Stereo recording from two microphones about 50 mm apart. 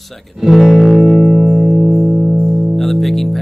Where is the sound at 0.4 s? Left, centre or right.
Centre.